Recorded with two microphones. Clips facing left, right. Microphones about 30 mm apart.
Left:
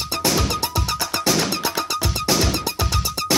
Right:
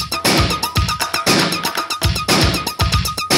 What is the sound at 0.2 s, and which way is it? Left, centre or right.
Music, right.